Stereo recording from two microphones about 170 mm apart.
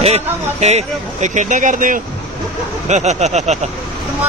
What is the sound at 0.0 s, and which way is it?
Speech, 40° right (ahead or behind).